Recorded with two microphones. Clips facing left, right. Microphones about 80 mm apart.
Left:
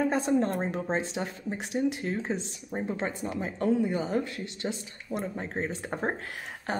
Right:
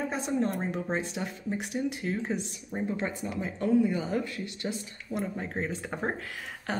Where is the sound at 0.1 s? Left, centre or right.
Left.